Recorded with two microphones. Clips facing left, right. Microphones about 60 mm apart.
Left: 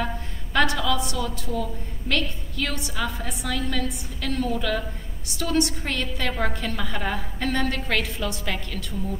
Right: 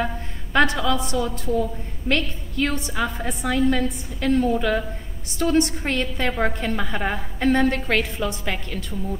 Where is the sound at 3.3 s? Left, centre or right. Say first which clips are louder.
Right 5 dB; right.